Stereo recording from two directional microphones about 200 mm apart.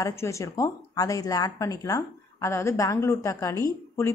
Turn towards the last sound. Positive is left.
turn(degrees=15)  # may be behind; listen again after turning